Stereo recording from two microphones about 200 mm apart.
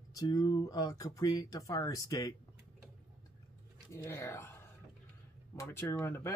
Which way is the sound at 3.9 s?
10° left (ahead or behind).